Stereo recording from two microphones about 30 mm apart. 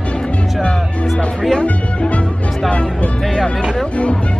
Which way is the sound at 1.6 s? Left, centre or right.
Left.